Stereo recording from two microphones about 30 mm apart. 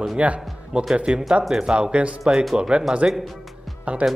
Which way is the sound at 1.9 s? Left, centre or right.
Right.